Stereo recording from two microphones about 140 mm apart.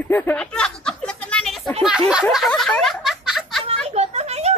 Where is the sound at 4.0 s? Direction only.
50° right (ahead or behind).